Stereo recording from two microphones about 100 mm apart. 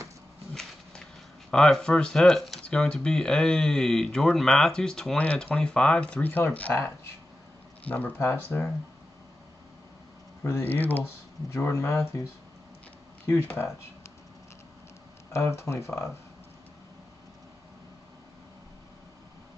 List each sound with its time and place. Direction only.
1.5 s speech: 5° left (ahead or behind)
7.8 s speech: 15° left (ahead or behind)
10.4 s speech: 30° left (ahead or behind)
10.7 s speech: 15° left (ahead or behind)
13.3 s speech: 25° left (ahead or behind)
15.3 s speech: 30° left (ahead or behind)